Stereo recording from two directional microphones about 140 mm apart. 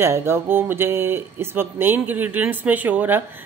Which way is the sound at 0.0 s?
20° right (ahead or behind).